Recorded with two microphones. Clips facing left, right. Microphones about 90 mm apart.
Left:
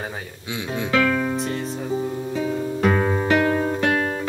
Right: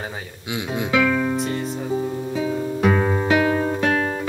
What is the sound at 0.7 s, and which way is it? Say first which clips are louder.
Music: right 1 dB; 5° right (ahead or behind).